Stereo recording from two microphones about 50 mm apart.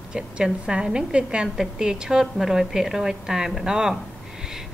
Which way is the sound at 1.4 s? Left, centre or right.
Centre.